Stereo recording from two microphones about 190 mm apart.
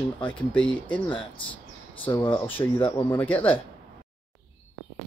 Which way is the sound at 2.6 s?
20° left (ahead or behind).